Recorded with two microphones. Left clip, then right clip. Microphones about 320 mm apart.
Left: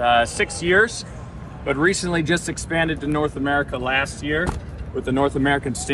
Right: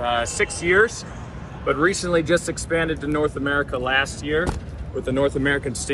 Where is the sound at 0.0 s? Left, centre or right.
Left.